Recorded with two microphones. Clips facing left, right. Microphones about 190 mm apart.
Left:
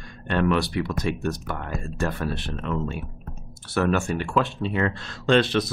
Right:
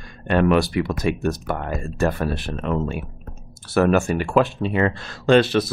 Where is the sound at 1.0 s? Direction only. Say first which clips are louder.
Right 5 dB; 5° right (ahead or behind).